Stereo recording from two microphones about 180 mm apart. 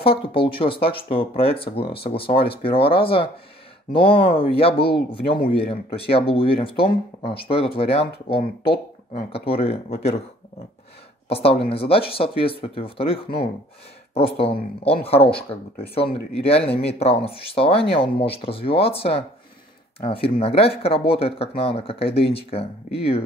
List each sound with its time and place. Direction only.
0.0 s speech: 30° left (ahead or behind)
11.2 s speech: 35° left (ahead or behind)